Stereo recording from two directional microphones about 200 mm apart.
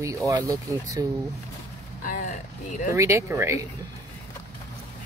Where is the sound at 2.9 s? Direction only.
15° right (ahead or behind).